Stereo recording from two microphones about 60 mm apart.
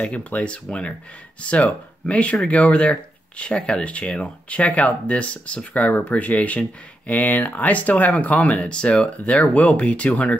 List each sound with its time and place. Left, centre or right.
0.0 s speech: left